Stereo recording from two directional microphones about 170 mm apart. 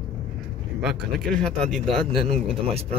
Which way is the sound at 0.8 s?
Centre (ahead or behind).